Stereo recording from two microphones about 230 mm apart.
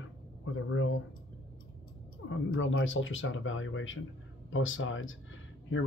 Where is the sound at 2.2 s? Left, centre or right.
Left.